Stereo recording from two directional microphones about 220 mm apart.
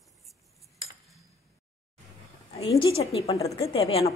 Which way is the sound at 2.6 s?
25° left (ahead or behind).